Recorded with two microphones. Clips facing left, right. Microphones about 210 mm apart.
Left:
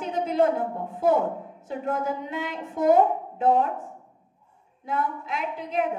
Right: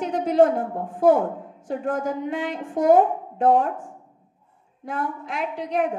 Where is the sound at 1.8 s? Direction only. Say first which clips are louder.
Right 2 dB; 50° right (ahead or behind).